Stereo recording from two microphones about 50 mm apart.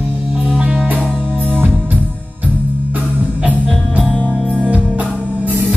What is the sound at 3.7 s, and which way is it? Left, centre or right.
Music, centre.